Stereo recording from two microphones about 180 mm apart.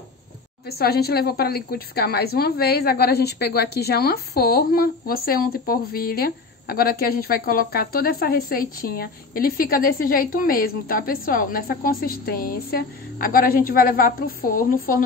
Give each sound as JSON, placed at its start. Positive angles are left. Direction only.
{"t": 0.7, "sound": "a woman's voice", "side_deg": 60}